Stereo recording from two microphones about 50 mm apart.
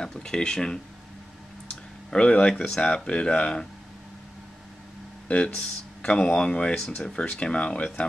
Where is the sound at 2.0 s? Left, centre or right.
Left.